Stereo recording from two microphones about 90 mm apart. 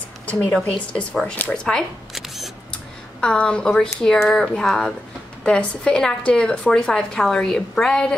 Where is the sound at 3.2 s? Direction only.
10° left (ahead or behind).